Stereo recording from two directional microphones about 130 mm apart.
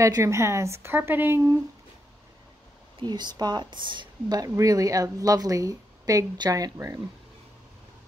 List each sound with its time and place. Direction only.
0.0 s speech: 25° right (ahead or behind)
3.0 s speech: 35° right (ahead or behind)